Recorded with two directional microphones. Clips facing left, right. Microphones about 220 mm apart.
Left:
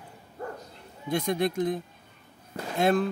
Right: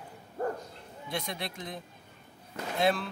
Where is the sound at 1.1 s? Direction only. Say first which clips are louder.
Left 10 dB; 50° left (ahead or behind).